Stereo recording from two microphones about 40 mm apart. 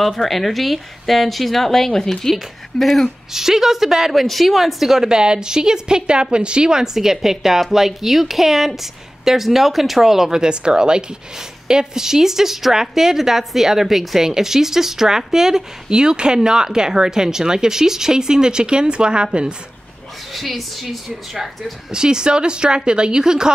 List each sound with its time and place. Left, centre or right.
0.0 s speech: centre
2.7 s a woman's voice: centre; by 19.5 s right
20.3 s speech: centre
21.9 s speech: centre